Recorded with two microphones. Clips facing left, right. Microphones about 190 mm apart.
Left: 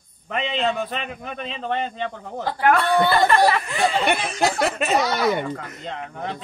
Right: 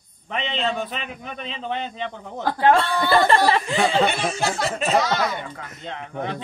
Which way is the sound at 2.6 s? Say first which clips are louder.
Left 1 dB; 25° right (ahead or behind).